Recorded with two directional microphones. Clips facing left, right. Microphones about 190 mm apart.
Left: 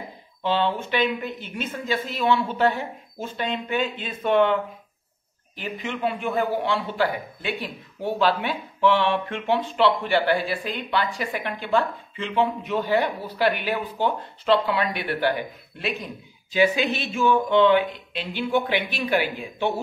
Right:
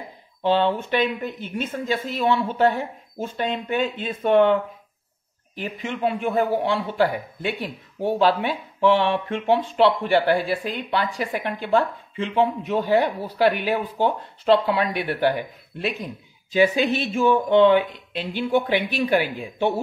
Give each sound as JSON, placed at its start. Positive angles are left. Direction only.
{"t": 0.4, "sound": "speech", "side_deg": -45}
{"t": 5.6, "sound": "speech", "side_deg": -45}
{"t": 16.5, "sound": "a woman's voice", "side_deg": -40}